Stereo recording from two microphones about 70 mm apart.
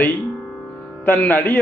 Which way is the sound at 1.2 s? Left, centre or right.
Left.